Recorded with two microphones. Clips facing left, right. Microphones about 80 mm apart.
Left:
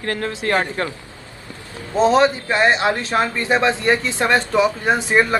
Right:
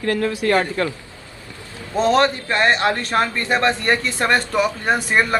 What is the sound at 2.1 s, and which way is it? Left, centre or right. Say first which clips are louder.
A man's voice: left 1 dB; centre.